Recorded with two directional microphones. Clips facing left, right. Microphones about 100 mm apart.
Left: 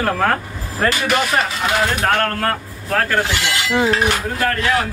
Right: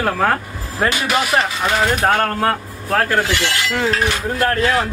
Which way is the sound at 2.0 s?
20° right (ahead or behind).